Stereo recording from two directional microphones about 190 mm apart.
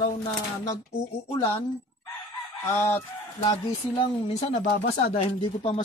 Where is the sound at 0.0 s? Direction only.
20° left (ahead or behind).